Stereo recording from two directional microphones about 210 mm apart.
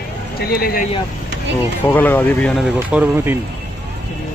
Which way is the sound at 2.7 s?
10° right (ahead or behind).